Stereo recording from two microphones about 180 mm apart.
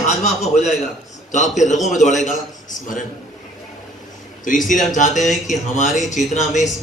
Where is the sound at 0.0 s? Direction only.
40° left (ahead or behind).